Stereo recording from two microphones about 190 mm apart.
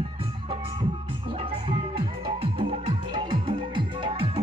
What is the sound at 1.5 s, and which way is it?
Music, 30° right (ahead or behind).